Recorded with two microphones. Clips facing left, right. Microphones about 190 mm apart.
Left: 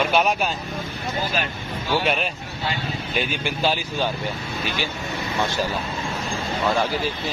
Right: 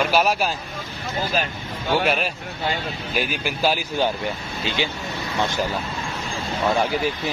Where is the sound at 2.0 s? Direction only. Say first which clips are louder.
Right 1 dB; 5° right (ahead or behind).